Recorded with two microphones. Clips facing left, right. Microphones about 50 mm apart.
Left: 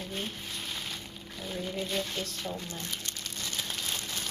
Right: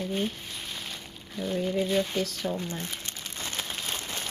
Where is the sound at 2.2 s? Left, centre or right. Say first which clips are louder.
Right 6 dB; right.